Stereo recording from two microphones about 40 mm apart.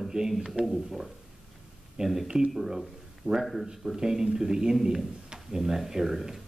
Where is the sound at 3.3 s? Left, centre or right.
Right.